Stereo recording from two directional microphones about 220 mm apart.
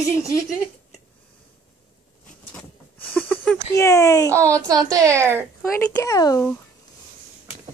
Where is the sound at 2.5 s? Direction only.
5° left (ahead or behind).